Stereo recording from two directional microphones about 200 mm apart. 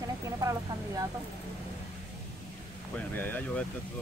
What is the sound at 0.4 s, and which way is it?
Speech, 15° right (ahead or behind).